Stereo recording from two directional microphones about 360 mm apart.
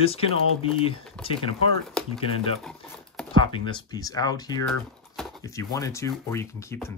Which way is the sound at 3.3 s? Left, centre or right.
Centre.